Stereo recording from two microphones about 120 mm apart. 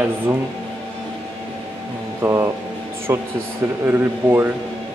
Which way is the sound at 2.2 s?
20° right (ahead or behind).